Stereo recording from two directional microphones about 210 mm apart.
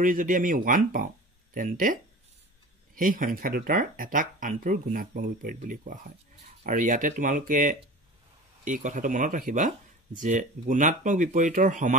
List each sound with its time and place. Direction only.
0.0 s speech: 40° right (ahead or behind)
3.0 s speech: 40° right (ahead or behind)